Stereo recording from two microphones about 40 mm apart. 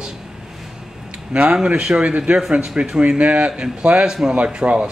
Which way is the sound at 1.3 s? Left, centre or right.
Right.